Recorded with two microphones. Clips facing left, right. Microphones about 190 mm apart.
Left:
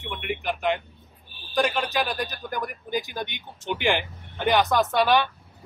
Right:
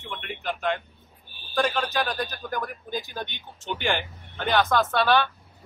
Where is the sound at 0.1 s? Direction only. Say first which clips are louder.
Left 3 dB; 15° left (ahead or behind).